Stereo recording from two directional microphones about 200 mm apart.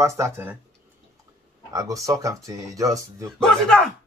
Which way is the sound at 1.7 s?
15° right (ahead or behind).